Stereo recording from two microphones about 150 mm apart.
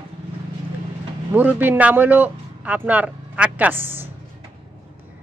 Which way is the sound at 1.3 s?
15° right (ahead or behind).